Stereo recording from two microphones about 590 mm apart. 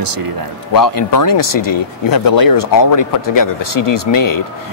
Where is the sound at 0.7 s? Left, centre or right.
Left.